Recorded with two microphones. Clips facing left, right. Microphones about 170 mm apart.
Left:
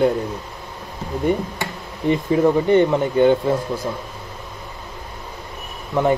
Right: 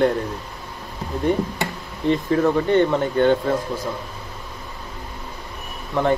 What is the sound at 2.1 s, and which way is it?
Speech, 10° left (ahead or behind).